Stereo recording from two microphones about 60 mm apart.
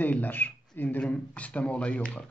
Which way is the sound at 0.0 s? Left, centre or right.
Left.